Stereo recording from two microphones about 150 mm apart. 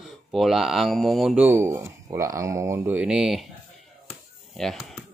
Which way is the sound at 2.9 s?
5° right (ahead or behind).